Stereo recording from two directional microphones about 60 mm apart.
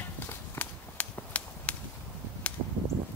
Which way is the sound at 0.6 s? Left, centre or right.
Left.